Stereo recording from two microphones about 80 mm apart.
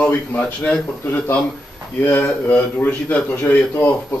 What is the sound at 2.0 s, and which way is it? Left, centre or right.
A man's voice, left.